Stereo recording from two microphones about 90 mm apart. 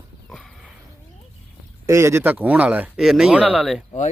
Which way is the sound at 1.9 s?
30° right (ahead or behind).